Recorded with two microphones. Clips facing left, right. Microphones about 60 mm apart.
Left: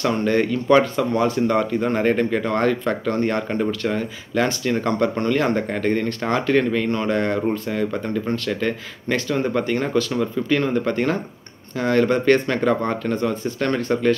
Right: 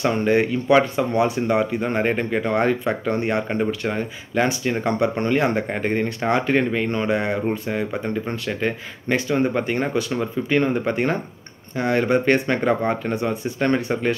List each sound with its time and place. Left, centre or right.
0.0 s speech: centre